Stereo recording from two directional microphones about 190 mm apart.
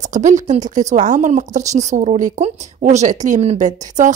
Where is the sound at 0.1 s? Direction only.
40° right (ahead or behind).